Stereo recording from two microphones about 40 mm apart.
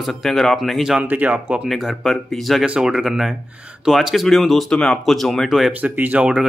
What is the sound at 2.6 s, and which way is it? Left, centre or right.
Speech, right.